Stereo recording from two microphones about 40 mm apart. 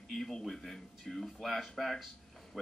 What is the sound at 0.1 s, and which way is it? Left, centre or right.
A man's voice, centre.